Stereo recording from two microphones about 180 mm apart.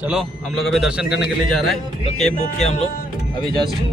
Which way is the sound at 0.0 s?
5° right (ahead or behind).